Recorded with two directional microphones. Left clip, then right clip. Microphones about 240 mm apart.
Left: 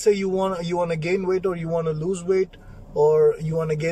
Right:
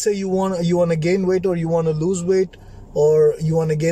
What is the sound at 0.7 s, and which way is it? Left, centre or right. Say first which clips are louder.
Speech: right 5 dB; centre.